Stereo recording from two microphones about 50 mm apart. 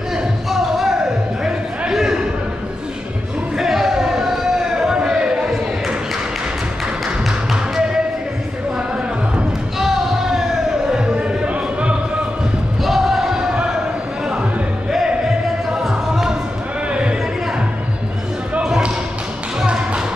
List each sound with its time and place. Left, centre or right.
0.1 s music: centre
1.9 s a sound: centre
3.5 s a sound: centre
9.8 s basketball bounce: centre
10.9 s music: centre
12.8 s music: centre
15.0 s music: centre
16.9 s a sound: right
19.6 s music: centre